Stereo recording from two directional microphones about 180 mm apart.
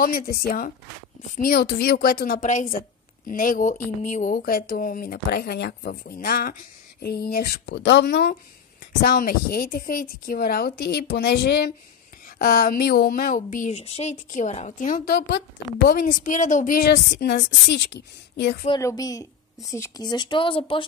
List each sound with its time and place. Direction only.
0.0 s speech: 55° left (ahead or behind)
12.4 s speech: 55° left (ahead or behind); by 18.6 s 70° left (ahead or behind)
18.8 s speech: 20° left (ahead or behind)